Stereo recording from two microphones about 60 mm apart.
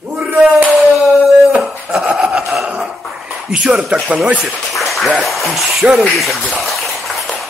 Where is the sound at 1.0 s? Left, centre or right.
Centre.